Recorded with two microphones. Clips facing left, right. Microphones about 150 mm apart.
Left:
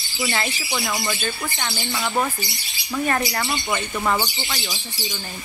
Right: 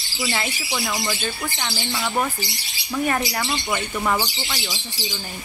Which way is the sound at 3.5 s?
Centre (ahead or behind).